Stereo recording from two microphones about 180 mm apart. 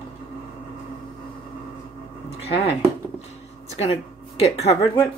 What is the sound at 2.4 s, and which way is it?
Speech, 35° left (ahead or behind).